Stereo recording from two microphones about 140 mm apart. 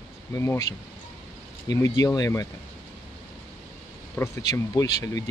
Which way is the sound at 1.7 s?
25° left (ahead or behind).